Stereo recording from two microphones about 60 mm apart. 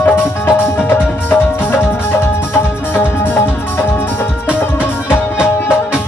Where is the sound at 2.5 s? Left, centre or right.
Left.